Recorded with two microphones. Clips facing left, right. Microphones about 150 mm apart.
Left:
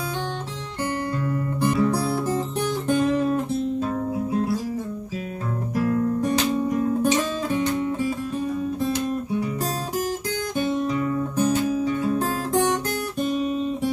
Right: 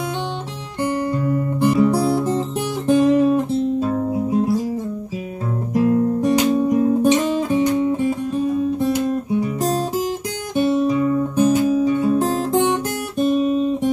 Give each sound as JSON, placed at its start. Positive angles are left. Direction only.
{"t": 1.1, "sound": "guitar", "side_deg": -20}
{"t": 3.0, "sound": "music", "side_deg": -20}
{"t": 5.8, "sound": "guitar", "side_deg": -20}
{"t": 10.5, "sound": "guitar", "side_deg": -20}